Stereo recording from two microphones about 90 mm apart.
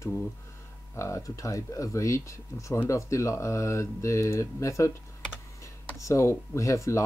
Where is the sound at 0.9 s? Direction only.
35° left (ahead or behind).